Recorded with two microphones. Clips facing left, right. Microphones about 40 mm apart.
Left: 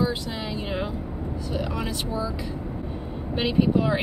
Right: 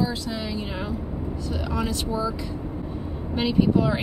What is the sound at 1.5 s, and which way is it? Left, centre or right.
Speech, centre.